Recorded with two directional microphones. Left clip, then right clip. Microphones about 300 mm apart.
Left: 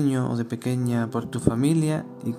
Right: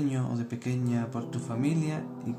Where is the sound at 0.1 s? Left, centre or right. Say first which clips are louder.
Left 7 dB; left.